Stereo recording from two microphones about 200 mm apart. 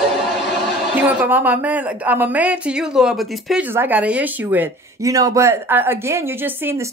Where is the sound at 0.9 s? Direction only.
5° right (ahead or behind).